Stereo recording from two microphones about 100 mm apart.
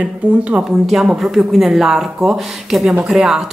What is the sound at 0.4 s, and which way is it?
Speech, 10° right (ahead or behind).